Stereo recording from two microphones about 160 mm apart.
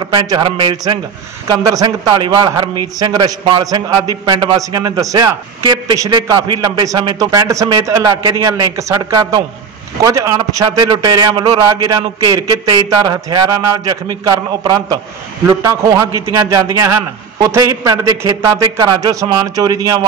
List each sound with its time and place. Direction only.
0.0 s a man's voice: 25° right (ahead or behind)